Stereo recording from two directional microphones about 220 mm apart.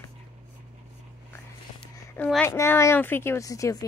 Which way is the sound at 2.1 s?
5° left (ahead or behind).